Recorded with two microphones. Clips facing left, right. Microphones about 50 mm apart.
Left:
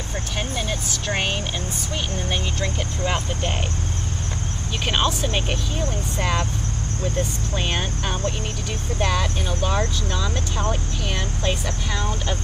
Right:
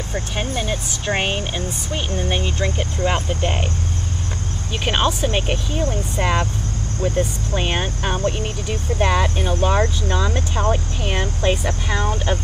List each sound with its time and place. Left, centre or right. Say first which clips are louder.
0.1 s speech: right 3 dB; centre
4.8 s speech: right 3 dB; centre